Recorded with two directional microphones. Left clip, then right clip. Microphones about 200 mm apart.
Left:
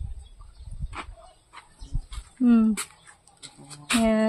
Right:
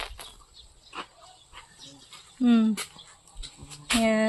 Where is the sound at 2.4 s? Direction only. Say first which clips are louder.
Left 2 dB; 20° left (ahead or behind).